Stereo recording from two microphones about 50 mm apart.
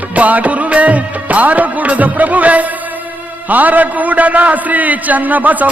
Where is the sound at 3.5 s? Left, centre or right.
Right.